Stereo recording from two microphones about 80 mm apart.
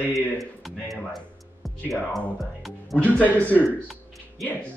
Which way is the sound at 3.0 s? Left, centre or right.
Centre.